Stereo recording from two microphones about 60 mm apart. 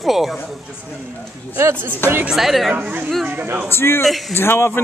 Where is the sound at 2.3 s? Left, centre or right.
Centre.